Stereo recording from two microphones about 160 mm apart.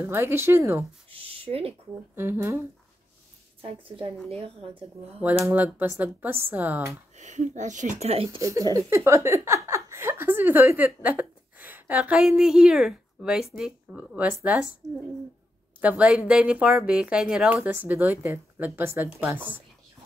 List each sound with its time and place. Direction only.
0.1 s speech: 15° right (ahead or behind)
1.1 s a sound: 35° right (ahead or behind)
2.1 s speech: 15° right (ahead or behind)
3.8 s a woman's voice: 35° right (ahead or behind)
5.5 s speech: 10° right (ahead or behind)
7.2 s speech: 50° right (ahead or behind)
8.4 s a woman's voice: 20° right (ahead or behind)
15.8 s speech: 10° right (ahead or behind)